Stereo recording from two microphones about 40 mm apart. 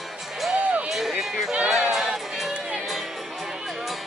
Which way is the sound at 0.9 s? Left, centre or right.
Centre.